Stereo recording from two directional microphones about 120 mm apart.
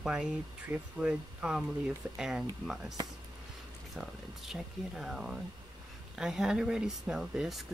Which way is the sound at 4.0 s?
Centre (ahead or behind).